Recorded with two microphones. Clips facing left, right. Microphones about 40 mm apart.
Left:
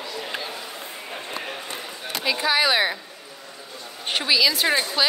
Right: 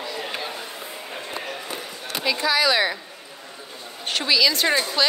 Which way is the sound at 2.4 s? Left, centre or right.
Left.